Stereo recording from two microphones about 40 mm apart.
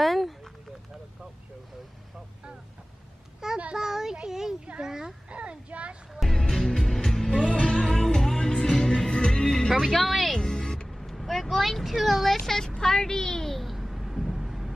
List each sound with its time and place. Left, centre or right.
0.0 s a sound: centre
3.4 s child singing: centre
4.8 s speech: centre
5.3 s speech: right
6.2 s music: centre
8.0 s music: centre
10.4 s music: centre
10.9 s vehicle: centre
11.4 s speech: centre
12.7 s a sound: centre